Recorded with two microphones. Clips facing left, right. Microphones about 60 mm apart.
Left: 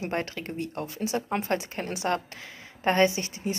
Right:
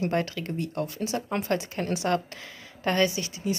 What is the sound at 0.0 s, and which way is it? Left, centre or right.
Speech, left.